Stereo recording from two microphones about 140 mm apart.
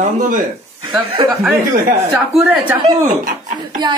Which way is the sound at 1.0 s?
35° right (ahead or behind).